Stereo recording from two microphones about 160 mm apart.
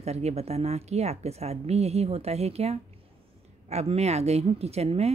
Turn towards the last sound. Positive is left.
turn(degrees=-40)  # may be behind; listen again after turning